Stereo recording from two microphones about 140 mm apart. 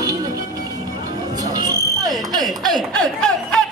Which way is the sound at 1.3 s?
30° right (ahead or behind).